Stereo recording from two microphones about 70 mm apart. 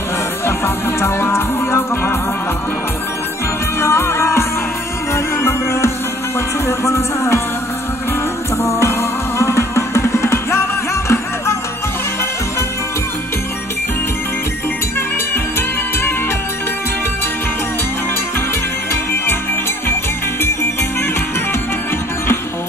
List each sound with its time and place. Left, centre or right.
1.0 s music: left
3.8 s music: left
8.6 s music: left